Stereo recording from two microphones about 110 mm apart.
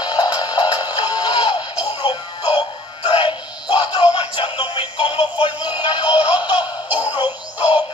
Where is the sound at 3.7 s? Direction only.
45° left (ahead or behind).